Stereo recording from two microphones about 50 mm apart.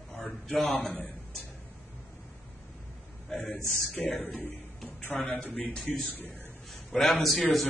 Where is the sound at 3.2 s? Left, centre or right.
Centre.